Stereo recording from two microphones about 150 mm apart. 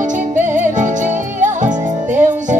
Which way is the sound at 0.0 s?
55° right (ahead or behind).